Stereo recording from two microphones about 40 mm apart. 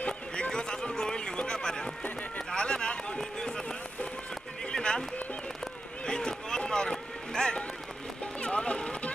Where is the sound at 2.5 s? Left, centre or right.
Left.